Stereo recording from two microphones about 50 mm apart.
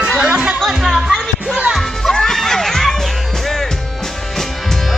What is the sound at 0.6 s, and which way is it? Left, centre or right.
Music, centre.